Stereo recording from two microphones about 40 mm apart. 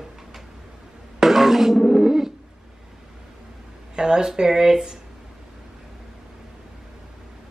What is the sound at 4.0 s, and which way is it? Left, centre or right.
Speech, centre.